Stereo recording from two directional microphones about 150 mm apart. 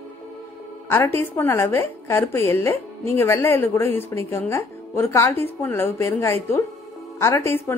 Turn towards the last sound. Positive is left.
turn(degrees=20)  # may be behind; listen again after turning